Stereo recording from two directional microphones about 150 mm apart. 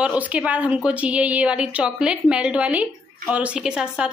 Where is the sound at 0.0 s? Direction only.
10° right (ahead or behind).